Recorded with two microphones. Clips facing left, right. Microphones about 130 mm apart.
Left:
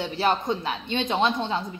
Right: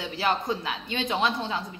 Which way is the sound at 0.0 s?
25° left (ahead or behind).